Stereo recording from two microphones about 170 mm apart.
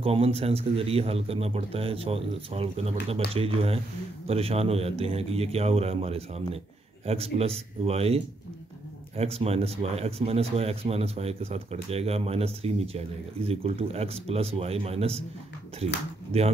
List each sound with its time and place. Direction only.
0.0 s speech: 35° right (ahead or behind)
16.3 s speech: 35° right (ahead or behind)